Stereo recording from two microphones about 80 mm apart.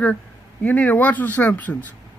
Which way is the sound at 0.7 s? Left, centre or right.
Left.